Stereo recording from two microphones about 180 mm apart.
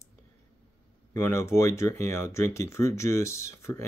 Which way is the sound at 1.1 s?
15° left (ahead or behind).